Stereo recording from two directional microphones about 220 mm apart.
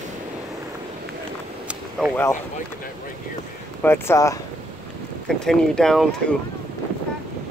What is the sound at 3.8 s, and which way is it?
Speech, 10° left (ahead or behind).